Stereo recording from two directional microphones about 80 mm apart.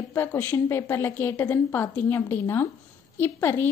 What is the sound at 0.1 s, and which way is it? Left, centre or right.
A woman's voice, left.